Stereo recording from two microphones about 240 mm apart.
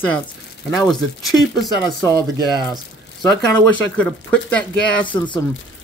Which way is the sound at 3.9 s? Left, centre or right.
Centre.